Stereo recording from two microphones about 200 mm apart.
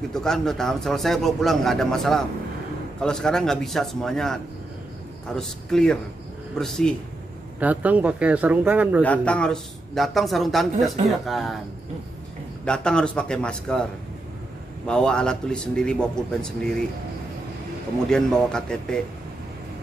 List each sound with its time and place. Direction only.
0.1 s a man's voice: centre (ahead or behind)
9.0 s a man's voice: 5° left (ahead or behind)
12.6 s a man's voice: 5° left (ahead or behind)
14.9 s a man's voice: 5° left (ahead or behind)
18.0 s a man's voice: 5° left (ahead or behind)